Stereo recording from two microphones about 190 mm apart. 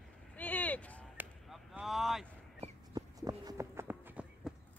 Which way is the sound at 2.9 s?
20° right (ahead or behind).